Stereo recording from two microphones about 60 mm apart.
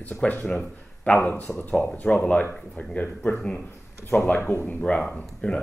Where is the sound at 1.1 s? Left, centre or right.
Left.